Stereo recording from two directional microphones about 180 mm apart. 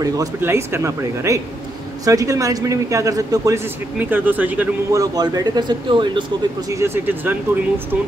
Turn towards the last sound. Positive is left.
turn(degrees=-10)  # may be behind; listen again after turning